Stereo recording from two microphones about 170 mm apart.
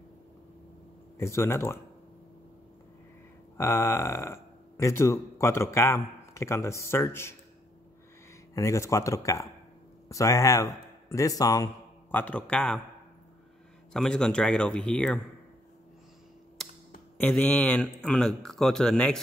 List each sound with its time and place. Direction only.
1.1 s speech: 15° left (ahead or behind)
3.5 s speech: 15° left (ahead or behind)
8.5 s a man's voice: 20° left (ahead or behind)
13.9 s speech: 5° left (ahead or behind)
17.2 s speech: 10° left (ahead or behind)